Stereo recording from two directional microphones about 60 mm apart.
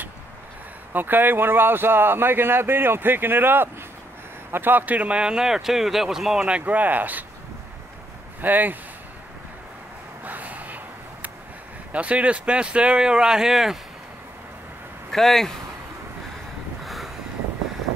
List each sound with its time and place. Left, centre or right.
0.9 s a man's voice: right; by 6.6 s centre
6.6 s speech: right
8.4 s speech: right
10.2 s gasp: right
11.9 s a man's voice: right; by 13.7 s centre
15.0 s speech: centre
16.8 s vehicle: centre